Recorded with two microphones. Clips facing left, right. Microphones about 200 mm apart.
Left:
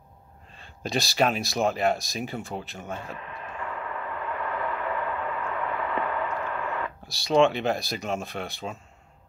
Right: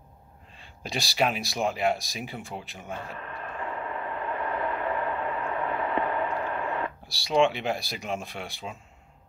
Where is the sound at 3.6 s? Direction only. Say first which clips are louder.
Right 1 dB; 25° right (ahead or behind).